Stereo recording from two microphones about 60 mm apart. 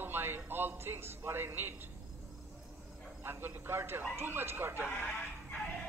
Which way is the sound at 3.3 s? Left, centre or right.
Right.